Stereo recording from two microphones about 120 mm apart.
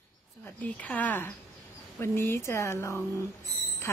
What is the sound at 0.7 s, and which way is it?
Speech, 10° left (ahead or behind).